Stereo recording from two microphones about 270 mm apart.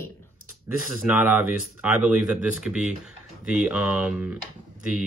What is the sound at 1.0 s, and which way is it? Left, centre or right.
Speech, centre.